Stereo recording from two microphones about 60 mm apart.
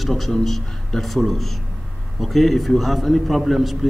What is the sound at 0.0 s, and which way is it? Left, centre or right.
A man's voice, centre.